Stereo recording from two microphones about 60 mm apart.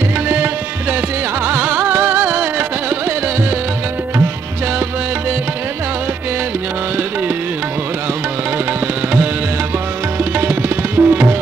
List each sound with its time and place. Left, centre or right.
1.4 s music: right
10.3 s tabla: right